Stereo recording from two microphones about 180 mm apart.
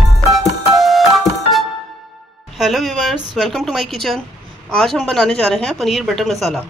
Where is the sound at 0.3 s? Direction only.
Centre (ahead or behind).